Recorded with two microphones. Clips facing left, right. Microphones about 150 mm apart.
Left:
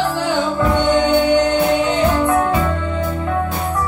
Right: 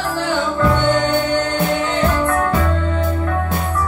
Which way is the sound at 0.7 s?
15° left (ahead or behind).